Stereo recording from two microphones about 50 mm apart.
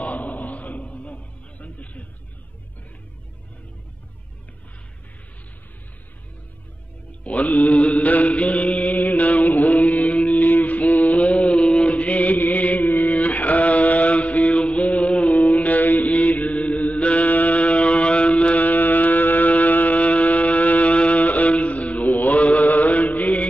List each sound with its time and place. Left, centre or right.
0.0 s chant: left
7.2 s mantra: left